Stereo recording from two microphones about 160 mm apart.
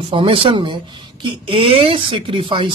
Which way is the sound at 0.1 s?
35° right (ahead or behind).